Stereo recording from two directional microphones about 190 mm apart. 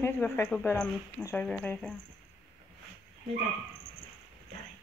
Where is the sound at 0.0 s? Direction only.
10° left (ahead or behind).